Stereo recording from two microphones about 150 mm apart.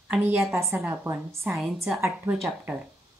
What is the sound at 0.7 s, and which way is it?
A woman's voice, 15° right (ahead or behind).